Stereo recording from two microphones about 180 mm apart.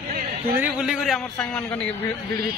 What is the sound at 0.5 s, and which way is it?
A man's voice, 5° right (ahead or behind).